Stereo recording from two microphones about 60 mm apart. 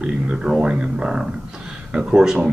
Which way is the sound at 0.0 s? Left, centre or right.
Centre.